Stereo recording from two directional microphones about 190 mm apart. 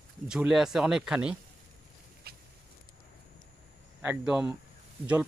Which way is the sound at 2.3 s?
55° right (ahead or behind).